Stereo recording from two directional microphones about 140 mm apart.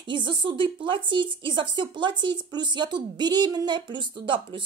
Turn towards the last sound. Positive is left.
turn(degrees=-35)  # may be behind; listen again after turning